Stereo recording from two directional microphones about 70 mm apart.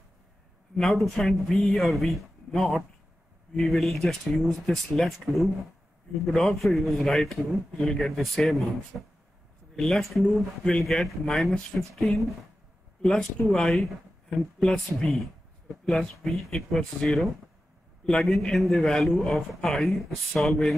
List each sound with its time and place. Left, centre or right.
0.7 s a man's voice: centre